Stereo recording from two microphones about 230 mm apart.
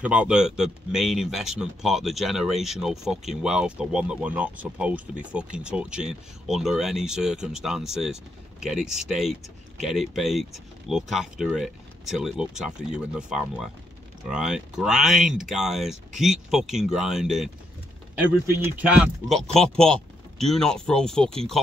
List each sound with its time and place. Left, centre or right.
0.0 s speech: centre
18.6 s speech: centre